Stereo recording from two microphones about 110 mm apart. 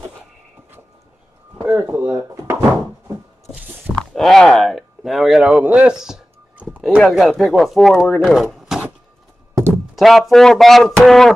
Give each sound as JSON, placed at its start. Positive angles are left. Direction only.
{"t": 1.6, "sound": "speech", "side_deg": -20}
{"t": 2.0, "sound": "speech", "side_deg": -30}
{"t": 3.9, "sound": "speech", "side_deg": 5}
{"t": 6.0, "sound": "a sound", "side_deg": -10}
{"t": 7.0, "sound": "speech", "side_deg": 0}
{"t": 8.2, "sound": "a sound", "side_deg": 0}
{"t": 9.9, "sound": "speech", "side_deg": 0}